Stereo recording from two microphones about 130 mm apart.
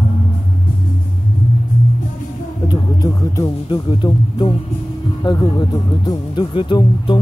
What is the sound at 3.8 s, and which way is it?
Music, 40° left (ahead or behind).